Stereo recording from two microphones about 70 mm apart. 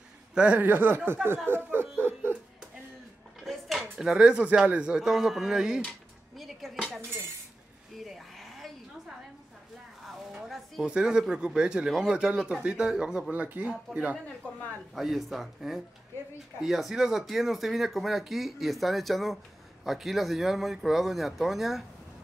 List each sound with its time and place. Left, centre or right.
0.3 s a man's voice: centre
0.6 s speech: right
3.4 s dishes: centre
4.0 s a man's voice: centre
6.3 s dishes: centre
8.0 s cattle: centre
10.0 s a sound: centre
10.9 s a man's voice: centre
13.3 s speech: right
14.4 s speech: centre
15.0 s speech: centre